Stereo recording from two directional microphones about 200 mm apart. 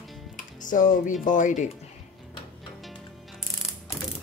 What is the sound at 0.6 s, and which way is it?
Speech, 40° left (ahead or behind).